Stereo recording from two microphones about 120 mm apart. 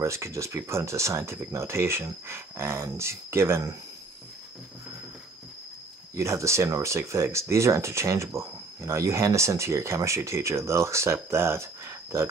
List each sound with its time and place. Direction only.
0.0 s speech: 25° right (ahead or behind)
6.1 s speech: 25° right (ahead or behind)